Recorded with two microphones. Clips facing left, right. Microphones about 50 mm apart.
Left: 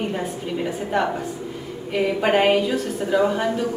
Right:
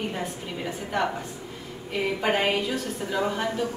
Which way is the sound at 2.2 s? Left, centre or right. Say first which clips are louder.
Left 7 dB; centre.